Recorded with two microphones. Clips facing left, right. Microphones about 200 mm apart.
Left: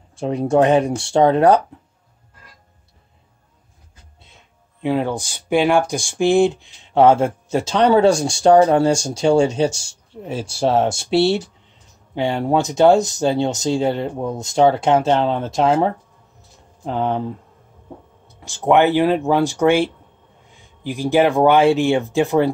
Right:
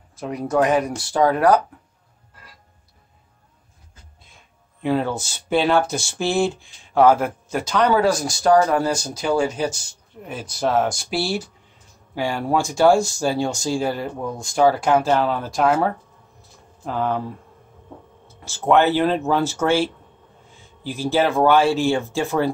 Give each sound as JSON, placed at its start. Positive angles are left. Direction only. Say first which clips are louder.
{"t": 0.1, "sound": "speech", "louder": "left 5 dB", "side_deg": 30}
{"t": 4.2, "sound": "speech", "louder": "left 2 dB", "side_deg": 20}